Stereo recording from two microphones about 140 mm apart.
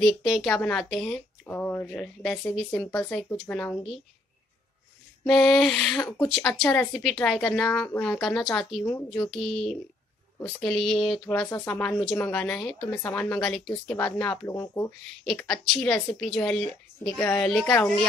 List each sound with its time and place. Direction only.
0.0 s speech: centre (ahead or behind)
1.4 s a woman's voice: 15° left (ahead or behind)
5.2 s speech: 5° left (ahead or behind)
8.8 s a woman's voice: 15° left (ahead or behind)
9.3 s a woman's voice: centre (ahead or behind); by 14.9 s 20° left (ahead or behind)
15.2 s a woman's voice: 5° left (ahead or behind)